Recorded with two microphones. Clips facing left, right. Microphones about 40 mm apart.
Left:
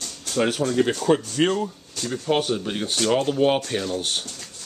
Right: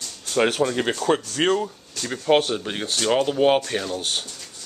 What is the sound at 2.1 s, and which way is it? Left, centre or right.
Speech, right.